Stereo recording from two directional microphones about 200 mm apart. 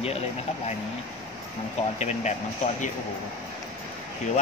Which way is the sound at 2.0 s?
35° left (ahead or behind).